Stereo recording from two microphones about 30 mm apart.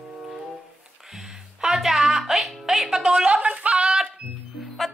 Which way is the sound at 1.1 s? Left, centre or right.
Centre.